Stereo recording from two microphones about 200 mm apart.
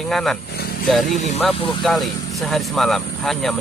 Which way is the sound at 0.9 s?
Centre (ahead or behind).